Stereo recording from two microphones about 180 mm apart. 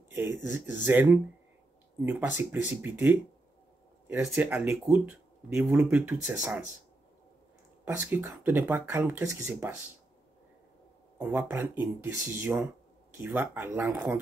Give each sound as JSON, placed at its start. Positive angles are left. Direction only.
{"t": 0.1, "sound": "speech", "side_deg": -10}
{"t": 7.8, "sound": "speech", "side_deg": -10}
{"t": 11.1, "sound": "speech", "side_deg": -10}